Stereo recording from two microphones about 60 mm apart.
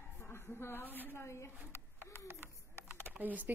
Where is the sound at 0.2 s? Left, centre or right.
Left.